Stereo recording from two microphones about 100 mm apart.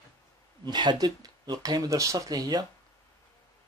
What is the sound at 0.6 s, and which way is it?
Speech, 45° right (ahead or behind).